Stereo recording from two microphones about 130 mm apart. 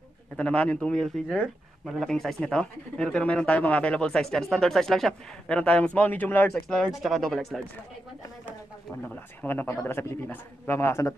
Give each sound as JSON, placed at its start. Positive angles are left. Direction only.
{"t": 0.4, "sound": "speech", "side_deg": 10}
{"t": 6.5, "sound": "speech", "side_deg": 5}
{"t": 9.0, "sound": "speech", "side_deg": 10}